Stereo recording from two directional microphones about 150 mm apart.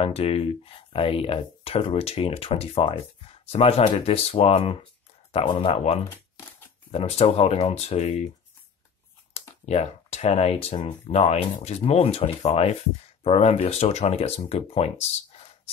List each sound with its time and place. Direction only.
0.0 s speech: 40° left (ahead or behind)
9.3 s speech: 45° left (ahead or behind)